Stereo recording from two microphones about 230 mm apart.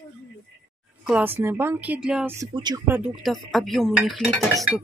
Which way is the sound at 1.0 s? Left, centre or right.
Centre.